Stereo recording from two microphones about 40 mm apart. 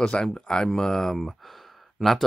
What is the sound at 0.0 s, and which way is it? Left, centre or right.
Speech, centre.